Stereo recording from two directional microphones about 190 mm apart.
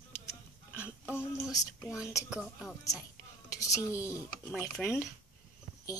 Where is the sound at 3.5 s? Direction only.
15° left (ahead or behind).